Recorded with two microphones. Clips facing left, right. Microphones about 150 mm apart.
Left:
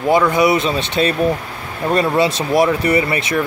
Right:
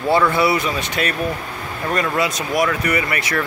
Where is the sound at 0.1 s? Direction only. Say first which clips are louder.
Left 3 dB; 15° left (ahead or behind).